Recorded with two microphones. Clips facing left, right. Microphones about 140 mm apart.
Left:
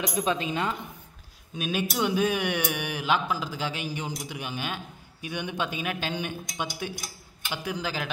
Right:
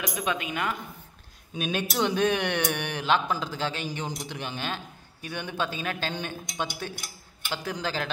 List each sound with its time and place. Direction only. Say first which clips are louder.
0.0 s a woman's voice: left 3 dB; 30° left (ahead or behind)
1.5 s speech: even; 5° left (ahead or behind)